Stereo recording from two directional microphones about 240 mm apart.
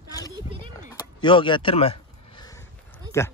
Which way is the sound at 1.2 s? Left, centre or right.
Centre.